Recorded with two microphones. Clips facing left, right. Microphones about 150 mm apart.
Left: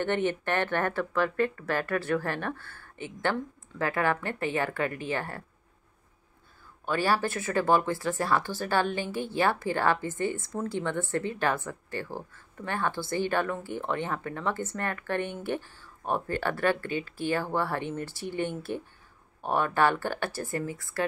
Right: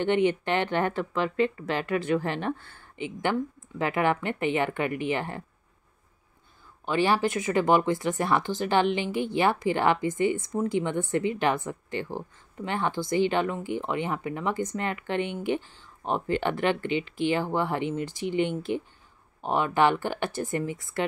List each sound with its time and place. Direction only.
0.0 s speech: 15° right (ahead or behind)
6.9 s speech: 15° right (ahead or behind)